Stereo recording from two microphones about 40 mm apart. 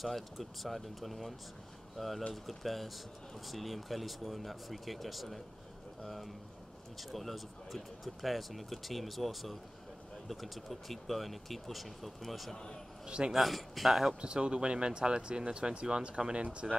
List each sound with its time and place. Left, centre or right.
0.0 s speech: centre
13.0 s speech: right
13.3 s speech: centre
14.2 s speech: right